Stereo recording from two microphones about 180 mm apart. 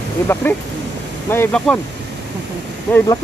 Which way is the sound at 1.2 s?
10° left (ahead or behind).